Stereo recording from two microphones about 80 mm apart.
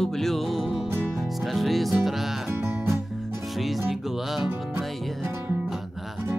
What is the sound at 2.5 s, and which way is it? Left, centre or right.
Music, right.